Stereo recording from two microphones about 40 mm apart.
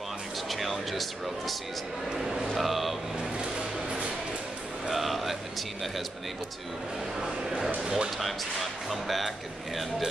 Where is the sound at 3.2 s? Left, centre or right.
Right.